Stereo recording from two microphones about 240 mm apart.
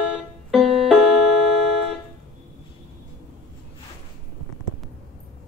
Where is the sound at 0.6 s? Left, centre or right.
Right.